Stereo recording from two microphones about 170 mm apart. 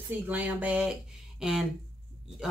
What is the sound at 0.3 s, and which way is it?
Speech, 10° right (ahead or behind).